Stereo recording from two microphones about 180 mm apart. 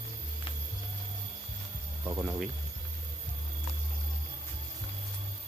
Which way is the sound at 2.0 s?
15° right (ahead or behind).